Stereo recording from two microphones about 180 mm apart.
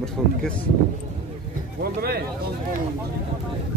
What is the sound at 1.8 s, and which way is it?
Speech, 60° right (ahead or behind).